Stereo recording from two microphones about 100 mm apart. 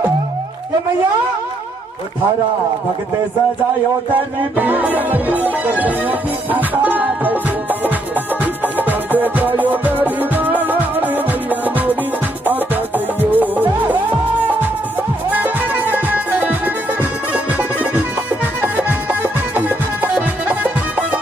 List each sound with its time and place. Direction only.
4.6 s music: 20° right (ahead or behind)
8.7 s music: 20° right (ahead or behind)
15.3 s music: 20° right (ahead or behind)